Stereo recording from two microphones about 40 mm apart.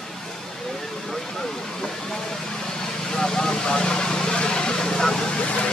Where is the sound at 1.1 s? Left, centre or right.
Centre.